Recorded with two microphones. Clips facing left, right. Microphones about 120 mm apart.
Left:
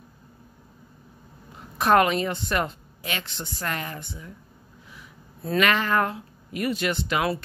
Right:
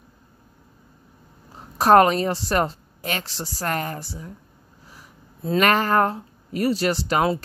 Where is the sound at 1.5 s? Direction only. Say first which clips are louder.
Right 5 dB; 35° right (ahead or behind).